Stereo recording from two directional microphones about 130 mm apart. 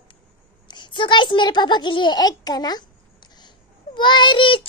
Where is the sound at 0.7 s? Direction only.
35° left (ahead or behind).